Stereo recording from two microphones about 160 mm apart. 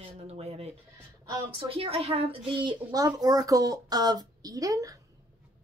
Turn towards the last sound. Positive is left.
turn(degrees=-20)  # may be behind; listen again after turning